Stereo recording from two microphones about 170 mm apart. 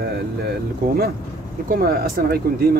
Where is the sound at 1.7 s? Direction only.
65° right (ahead or behind).